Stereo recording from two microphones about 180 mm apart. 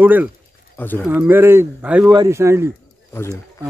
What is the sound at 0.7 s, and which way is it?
Speech, 10° left (ahead or behind).